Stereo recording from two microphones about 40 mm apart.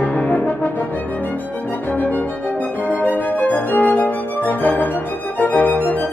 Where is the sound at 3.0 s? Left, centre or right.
Left.